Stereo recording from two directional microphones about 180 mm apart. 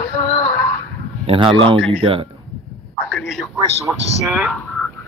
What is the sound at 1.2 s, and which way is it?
Speech, 30° right (ahead or behind).